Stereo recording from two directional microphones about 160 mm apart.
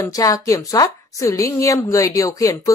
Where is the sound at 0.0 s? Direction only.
20° left (ahead or behind).